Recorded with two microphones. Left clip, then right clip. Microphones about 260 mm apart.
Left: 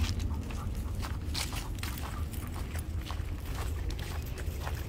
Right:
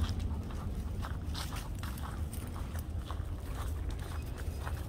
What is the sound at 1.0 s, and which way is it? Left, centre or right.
Walk, left.